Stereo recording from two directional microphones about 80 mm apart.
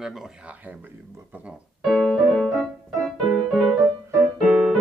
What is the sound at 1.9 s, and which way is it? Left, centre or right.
Keyboard, centre.